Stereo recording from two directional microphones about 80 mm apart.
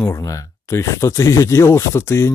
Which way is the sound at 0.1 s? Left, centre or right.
Left.